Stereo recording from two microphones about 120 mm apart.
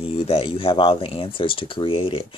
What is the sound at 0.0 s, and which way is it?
Speech, 55° left (ahead or behind).